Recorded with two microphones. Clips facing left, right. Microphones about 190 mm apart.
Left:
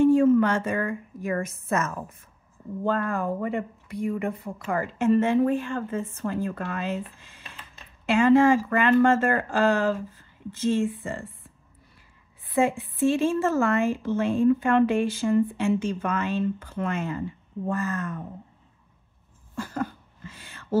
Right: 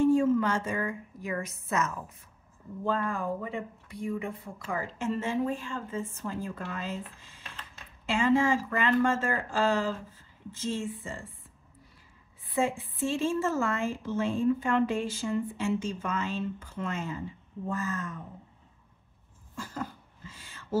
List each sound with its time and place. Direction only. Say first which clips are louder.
0.0 s speech: left 5 dB; 60° left (ahead or behind)
2.8 s speech: left 4 dB; 60° left (ahead or behind)
12.5 s speech: left 6 dB; 65° left (ahead or behind)
19.5 s cough: left 7 dB; 65° left (ahead or behind)